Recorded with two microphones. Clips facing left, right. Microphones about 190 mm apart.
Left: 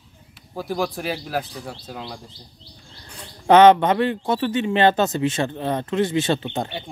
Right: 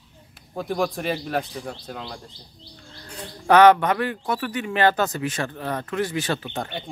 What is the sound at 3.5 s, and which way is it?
A man's voice, 25° left (ahead or behind).